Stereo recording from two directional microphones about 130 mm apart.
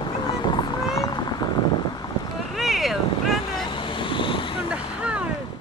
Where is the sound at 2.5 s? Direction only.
Centre (ahead or behind).